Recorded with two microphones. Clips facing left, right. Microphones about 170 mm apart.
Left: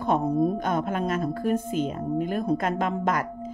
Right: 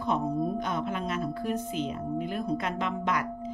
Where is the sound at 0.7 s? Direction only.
50° left (ahead or behind).